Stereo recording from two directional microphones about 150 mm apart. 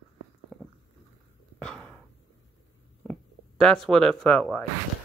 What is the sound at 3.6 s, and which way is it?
Speech, 5° left (ahead or behind).